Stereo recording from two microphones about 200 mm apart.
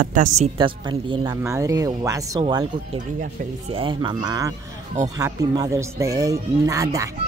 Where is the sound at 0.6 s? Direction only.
25° right (ahead or behind).